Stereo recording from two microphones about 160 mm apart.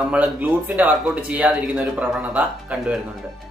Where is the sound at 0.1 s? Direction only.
10° right (ahead or behind).